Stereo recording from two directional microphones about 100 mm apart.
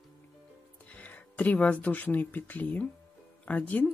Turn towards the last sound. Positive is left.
turn(degrees=15)  # may be behind; listen again after turning